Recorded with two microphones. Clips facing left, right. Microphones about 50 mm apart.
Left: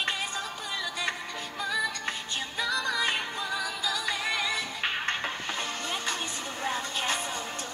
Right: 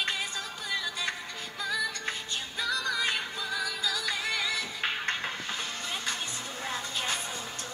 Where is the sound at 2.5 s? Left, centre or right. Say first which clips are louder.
Left 2 dB; left.